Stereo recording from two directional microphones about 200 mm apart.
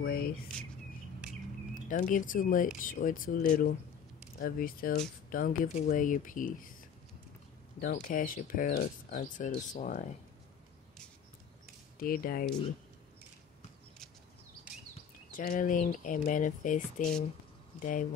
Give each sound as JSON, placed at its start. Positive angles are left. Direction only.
{"t": 0.0, "sound": "speech", "side_deg": 50}
{"t": 1.9, "sound": "speech", "side_deg": 40}
{"t": 7.8, "sound": "speech", "side_deg": 45}
{"t": 12.0, "sound": "speech", "side_deg": 45}
{"t": 15.3, "sound": "speech", "side_deg": 40}